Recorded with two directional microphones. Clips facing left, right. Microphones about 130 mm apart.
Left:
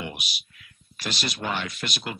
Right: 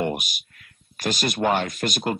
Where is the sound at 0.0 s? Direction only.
50° right (ahead or behind).